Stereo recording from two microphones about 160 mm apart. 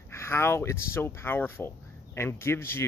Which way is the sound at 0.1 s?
15° left (ahead or behind).